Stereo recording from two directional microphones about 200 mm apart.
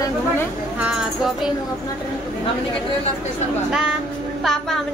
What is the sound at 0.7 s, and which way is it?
Speech, 5° right (ahead or behind).